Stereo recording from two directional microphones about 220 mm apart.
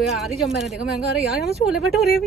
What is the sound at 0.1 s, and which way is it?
Speech, centre (ahead or behind).